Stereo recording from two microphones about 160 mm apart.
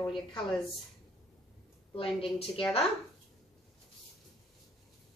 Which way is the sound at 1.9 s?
35° left (ahead or behind).